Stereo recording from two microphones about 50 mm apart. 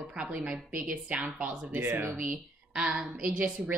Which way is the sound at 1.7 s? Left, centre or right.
Right.